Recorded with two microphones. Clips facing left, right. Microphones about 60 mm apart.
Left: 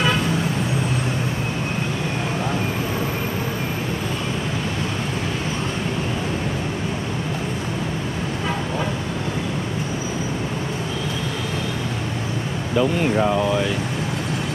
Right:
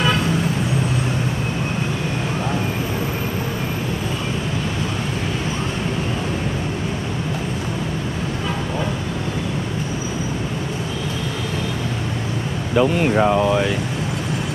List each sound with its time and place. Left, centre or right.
12.7 s speech: right